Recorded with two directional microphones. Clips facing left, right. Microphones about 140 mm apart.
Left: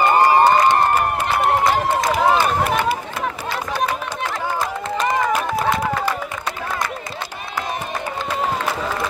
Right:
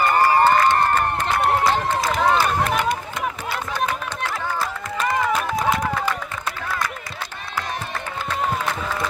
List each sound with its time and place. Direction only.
0.0 s crowd: 20° left (ahead or behind); by 1.8 s centre (ahead or behind)
2.0 s run: 10° left (ahead or behind)
5.3 s a sound: 5° left (ahead or behind)